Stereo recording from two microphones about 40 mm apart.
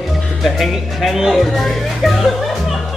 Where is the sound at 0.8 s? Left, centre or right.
Centre.